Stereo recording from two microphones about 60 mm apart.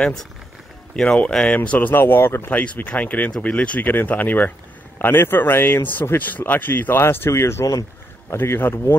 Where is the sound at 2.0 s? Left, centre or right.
Left.